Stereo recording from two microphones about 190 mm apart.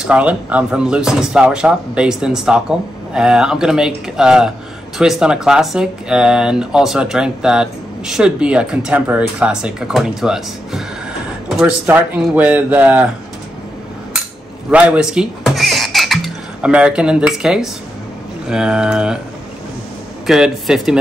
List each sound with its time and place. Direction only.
0.0 s speech: 5° right (ahead or behind)
14.7 s a sound: 5° right (ahead or behind)
16.6 s speech: 5° right (ahead or behind)
20.2 s speech: centre (ahead or behind)